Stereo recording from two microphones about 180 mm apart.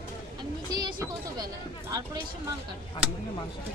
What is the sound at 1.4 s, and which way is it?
Speech, 20° right (ahead or behind).